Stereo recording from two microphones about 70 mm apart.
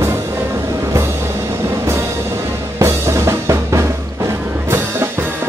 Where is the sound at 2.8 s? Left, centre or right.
Right.